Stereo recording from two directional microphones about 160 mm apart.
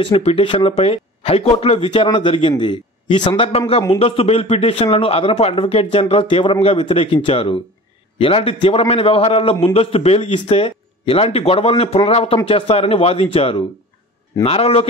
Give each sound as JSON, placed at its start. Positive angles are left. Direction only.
{"t": 0.0, "sound": "speech", "side_deg": 35}